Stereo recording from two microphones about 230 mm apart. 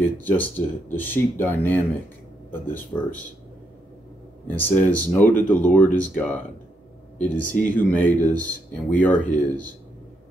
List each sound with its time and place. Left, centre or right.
0.2 s speech: centre
4.5 s speech: centre